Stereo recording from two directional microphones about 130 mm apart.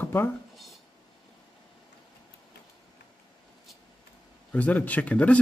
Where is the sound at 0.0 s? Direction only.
15° left (ahead or behind).